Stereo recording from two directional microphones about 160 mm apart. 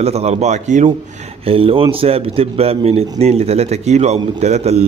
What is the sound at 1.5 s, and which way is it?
A man's voice, 35° right (ahead or behind).